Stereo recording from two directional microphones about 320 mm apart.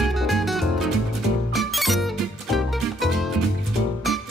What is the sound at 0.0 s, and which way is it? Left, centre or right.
Music, centre.